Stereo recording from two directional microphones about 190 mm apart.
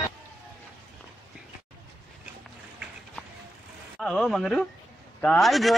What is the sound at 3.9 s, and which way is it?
Speech, centre (ahead or behind).